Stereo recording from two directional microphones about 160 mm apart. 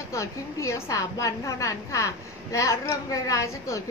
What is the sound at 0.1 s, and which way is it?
A woman's voice, 20° left (ahead or behind).